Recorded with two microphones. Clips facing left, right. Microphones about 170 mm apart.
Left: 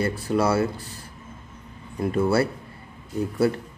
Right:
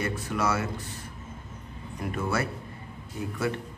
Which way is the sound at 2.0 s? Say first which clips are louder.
Left 8 dB; 30° left (ahead or behind).